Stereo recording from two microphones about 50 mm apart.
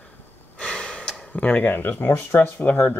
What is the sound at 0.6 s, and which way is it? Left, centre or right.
Gasp, centre.